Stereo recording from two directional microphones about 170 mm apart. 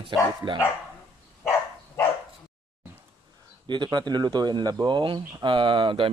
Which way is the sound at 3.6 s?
25° right (ahead or behind).